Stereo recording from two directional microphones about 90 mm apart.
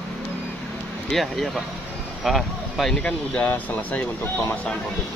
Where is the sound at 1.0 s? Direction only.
Centre (ahead or behind); by 4.3 s 20° left (ahead or behind).